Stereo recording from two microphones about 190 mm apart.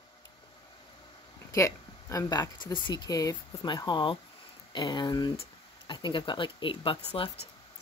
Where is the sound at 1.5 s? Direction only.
15° left (ahead or behind).